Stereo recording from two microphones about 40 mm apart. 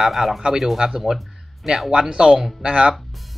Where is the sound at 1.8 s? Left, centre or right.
Right.